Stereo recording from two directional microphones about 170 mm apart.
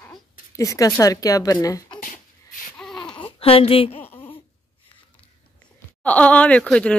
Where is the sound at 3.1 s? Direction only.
35° left (ahead or behind).